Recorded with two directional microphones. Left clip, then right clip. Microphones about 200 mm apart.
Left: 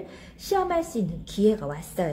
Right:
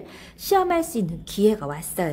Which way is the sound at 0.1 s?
30° right (ahead or behind).